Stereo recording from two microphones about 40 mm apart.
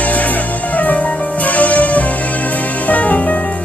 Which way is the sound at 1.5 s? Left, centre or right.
Left.